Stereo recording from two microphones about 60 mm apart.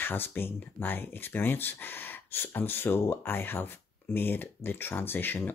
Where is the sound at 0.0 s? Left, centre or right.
Left.